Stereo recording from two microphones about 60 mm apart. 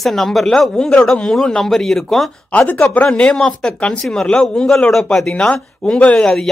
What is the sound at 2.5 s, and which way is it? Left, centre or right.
Speech, left.